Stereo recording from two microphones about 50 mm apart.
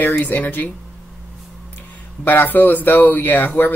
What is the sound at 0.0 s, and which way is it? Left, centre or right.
Speech, left.